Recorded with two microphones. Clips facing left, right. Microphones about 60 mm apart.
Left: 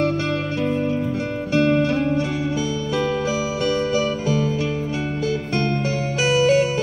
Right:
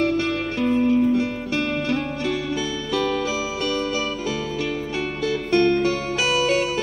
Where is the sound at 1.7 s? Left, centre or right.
Centre.